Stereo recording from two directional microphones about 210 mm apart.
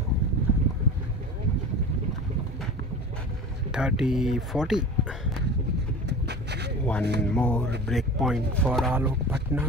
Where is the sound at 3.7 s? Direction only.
5° right (ahead or behind).